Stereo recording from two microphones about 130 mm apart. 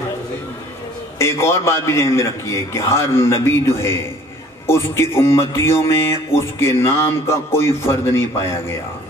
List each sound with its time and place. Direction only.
1.1 s speech: 20° left (ahead or behind)